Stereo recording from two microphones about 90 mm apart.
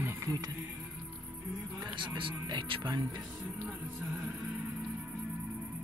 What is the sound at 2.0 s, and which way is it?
Speech, 70° right (ahead or behind).